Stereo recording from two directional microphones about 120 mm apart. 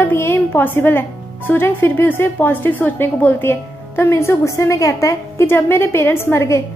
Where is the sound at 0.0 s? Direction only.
20° left (ahead or behind).